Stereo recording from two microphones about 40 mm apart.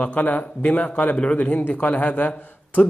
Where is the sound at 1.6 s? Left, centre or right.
Left.